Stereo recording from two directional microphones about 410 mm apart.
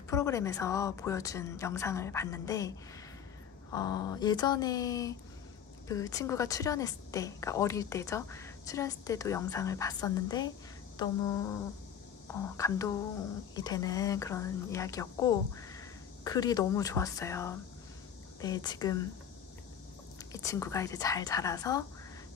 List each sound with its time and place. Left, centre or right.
0.1 s a woman's voice: centre
3.7 s a woman's voice: centre
11.0 s a sound: centre
12.3 s a woman's voice: centre
20.3 s a woman's voice: centre